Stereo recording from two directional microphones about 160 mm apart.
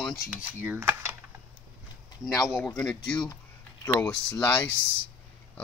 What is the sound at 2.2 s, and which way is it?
Speech, centre (ahead or behind).